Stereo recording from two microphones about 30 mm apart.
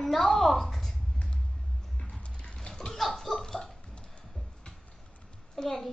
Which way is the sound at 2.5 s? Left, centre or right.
Left.